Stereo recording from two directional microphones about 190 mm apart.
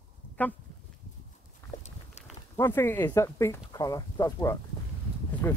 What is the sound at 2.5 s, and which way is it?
Speech, 15° left (ahead or behind).